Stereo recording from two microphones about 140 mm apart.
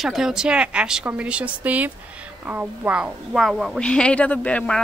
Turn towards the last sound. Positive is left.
turn(degrees=10)  # may be behind; listen again after turning